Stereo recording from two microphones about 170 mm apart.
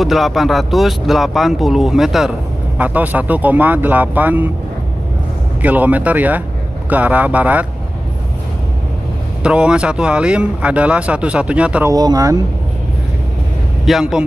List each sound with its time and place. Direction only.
0.0 s speech: centre (ahead or behind)
5.6 s speech: 10° right (ahead or behind)
9.4 s speech: 5° right (ahead or behind)
11.9 s speech: 20° right (ahead or behind)
13.8 s speech: 5° right (ahead or behind)